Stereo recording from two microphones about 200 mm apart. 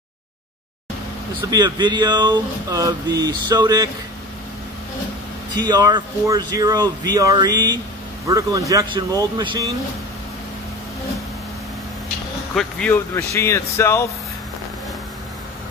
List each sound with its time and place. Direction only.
1.5 s speech: 20° right (ahead or behind)
5.6 s speech: 20° right (ahead or behind)
12.5 s speech: 10° left (ahead or behind)